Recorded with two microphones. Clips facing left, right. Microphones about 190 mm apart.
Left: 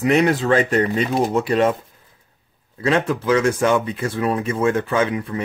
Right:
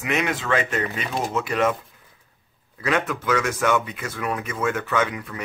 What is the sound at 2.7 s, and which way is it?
Speech, 30° left (ahead or behind).